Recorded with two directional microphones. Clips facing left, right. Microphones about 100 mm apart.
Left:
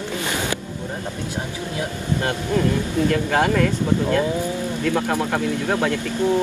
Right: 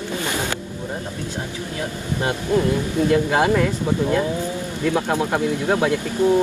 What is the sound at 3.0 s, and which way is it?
Speech, 20° right (ahead or behind).